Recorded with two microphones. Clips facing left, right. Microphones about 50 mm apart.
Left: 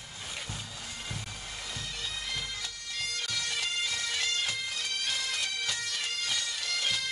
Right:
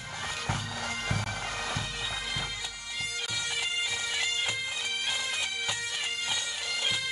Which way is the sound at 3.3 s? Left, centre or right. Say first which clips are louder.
Right 2 dB; centre.